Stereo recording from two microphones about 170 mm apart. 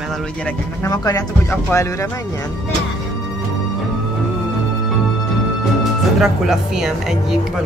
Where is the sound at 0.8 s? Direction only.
20° left (ahead or behind).